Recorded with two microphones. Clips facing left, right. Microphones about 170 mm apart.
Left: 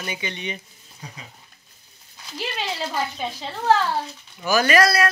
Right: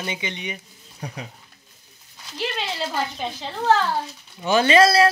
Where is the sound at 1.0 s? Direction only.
70° right (ahead or behind).